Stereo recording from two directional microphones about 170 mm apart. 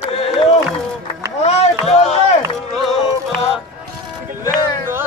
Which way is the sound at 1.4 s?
40° left (ahead or behind).